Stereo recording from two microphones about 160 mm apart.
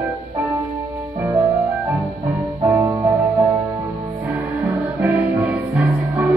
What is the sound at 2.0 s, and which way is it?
Music, centre (ahead or behind).